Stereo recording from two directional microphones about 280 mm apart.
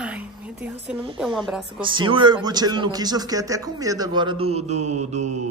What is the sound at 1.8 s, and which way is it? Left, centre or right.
A woman's voice, centre.